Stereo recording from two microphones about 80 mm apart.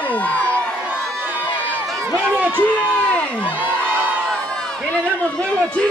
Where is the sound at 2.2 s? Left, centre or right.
Right.